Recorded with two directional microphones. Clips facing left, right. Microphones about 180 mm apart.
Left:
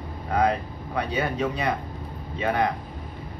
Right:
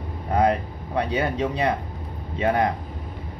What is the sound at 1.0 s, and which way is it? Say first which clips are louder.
Speech: right 2 dB; 30° right (ahead or behind).